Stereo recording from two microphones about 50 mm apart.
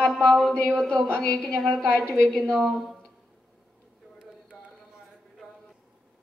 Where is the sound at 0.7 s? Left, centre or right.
Centre.